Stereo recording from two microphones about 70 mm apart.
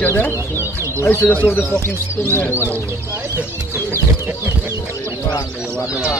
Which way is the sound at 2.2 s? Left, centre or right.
Left.